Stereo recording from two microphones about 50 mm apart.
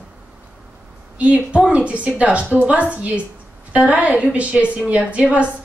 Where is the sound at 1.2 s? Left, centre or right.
Right.